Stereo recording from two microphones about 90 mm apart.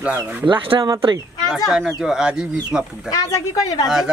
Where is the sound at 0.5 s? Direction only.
75° right (ahead or behind).